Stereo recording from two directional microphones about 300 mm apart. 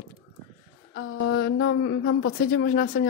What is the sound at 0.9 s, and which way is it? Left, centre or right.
Speech, left.